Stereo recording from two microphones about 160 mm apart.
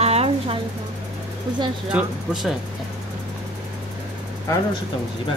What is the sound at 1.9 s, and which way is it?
Speech, 5° right (ahead or behind).